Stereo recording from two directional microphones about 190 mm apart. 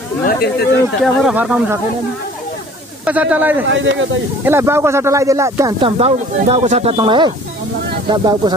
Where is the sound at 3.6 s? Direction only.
75° right (ahead or behind).